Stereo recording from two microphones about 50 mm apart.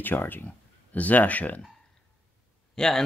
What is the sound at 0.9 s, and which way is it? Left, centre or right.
Speech, left.